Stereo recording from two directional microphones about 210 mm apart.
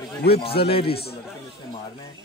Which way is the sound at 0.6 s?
25° left (ahead or behind).